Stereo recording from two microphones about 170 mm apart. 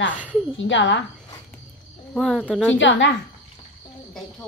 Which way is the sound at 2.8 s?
90° left.